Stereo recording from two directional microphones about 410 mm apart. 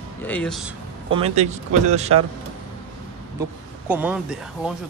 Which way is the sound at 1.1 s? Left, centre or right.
Centre.